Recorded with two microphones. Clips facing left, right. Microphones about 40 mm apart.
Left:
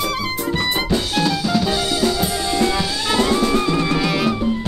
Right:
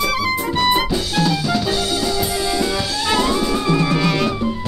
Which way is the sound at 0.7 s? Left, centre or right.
Centre.